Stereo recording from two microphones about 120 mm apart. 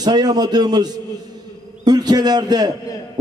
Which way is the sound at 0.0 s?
35° right (ahead or behind).